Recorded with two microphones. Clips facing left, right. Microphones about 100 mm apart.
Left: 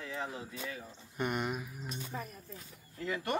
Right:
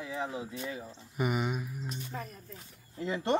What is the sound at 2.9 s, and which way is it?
Speech, 20° right (ahead or behind).